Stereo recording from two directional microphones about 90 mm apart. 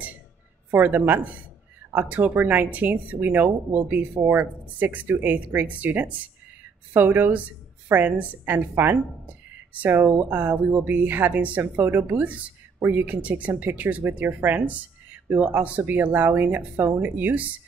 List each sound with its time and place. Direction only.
0.7 s speech: 20° right (ahead or behind)